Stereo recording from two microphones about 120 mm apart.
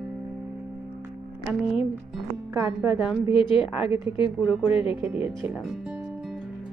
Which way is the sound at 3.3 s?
45° left (ahead or behind).